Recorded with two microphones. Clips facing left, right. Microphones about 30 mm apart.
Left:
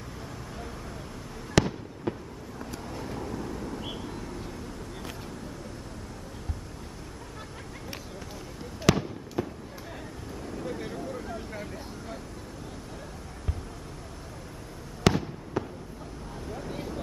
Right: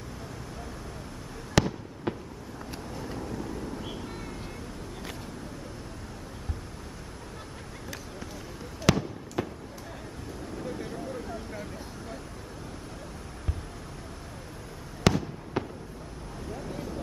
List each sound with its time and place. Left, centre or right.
1.5 s fireworks: centre
2.1 s vehicle: right
2.6 s vehicle: centre
4.1 s vehicle: centre
8.9 s fireworks: centre
9.4 s fireworks: right
10.4 s vehicle: centre
15.1 s fireworks: centre
15.6 s fireworks: right
16.7 s vehicle: centre